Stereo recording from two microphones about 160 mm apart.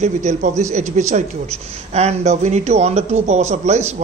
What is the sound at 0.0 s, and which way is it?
A woman's voice, 45° right (ahead or behind).